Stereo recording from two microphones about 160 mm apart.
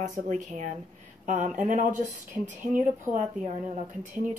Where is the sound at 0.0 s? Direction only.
50° right (ahead or behind).